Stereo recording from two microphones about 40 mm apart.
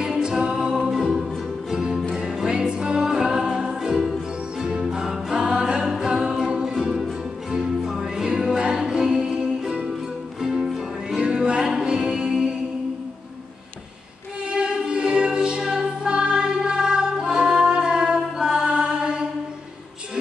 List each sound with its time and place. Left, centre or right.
0.0 s music: centre
5.0 s music: centre
6.0 s a capella: centre
6.7 s music: centre
14.5 s music: centre